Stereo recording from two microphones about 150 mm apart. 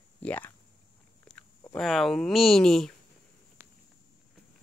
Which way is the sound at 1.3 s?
5° left (ahead or behind).